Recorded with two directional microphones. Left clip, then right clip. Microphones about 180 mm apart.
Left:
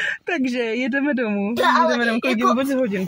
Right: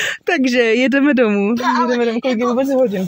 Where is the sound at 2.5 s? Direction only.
25° right (ahead or behind).